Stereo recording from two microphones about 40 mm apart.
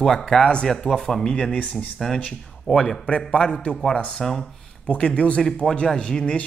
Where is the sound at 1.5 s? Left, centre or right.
Left.